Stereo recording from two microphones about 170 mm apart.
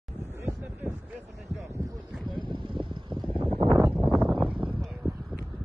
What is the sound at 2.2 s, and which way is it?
Boat, 30° right (ahead or behind).